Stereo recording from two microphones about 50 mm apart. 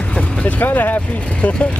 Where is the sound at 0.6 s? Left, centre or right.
Left.